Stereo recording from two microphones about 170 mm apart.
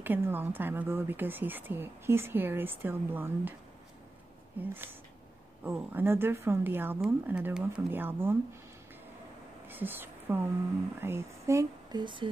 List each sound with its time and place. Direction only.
0.0 s speech: 10° right (ahead or behind)
4.6 s speech: 10° right (ahead or behind)
9.7 s speech: 10° right (ahead or behind); by 12.3 s 30° right (ahead or behind)